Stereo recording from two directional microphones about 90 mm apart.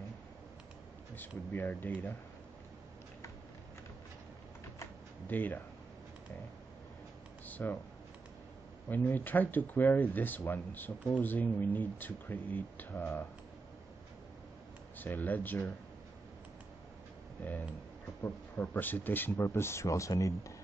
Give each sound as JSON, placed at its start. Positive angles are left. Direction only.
{"t": 1.5, "sound": "speech", "side_deg": 20}
{"t": 5.3, "sound": "speech", "side_deg": 20}
{"t": 7.4, "sound": "speech", "side_deg": 20}
{"t": 8.8, "sound": "speech", "side_deg": 20}
{"t": 15.0, "sound": "speech", "side_deg": 20}
{"t": 18.2, "sound": "speech", "side_deg": 20}